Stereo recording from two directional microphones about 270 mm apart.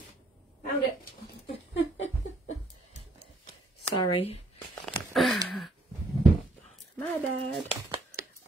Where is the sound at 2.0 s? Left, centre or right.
Left.